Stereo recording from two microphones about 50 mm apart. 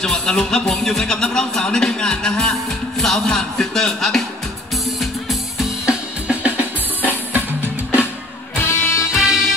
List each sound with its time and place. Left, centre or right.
0.0 s speech: centre
3.0 s music: centre
4.8 s music: centre
5.9 s drum kit: right
6.5 s music: right
8.5 s music: left
9.1 s music: centre